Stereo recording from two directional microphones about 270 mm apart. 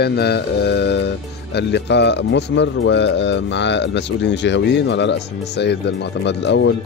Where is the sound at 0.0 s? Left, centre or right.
Left.